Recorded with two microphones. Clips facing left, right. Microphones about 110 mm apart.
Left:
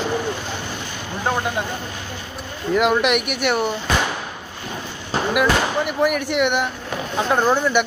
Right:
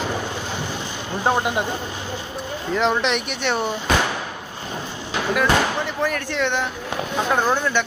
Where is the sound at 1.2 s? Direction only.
20° right (ahead or behind).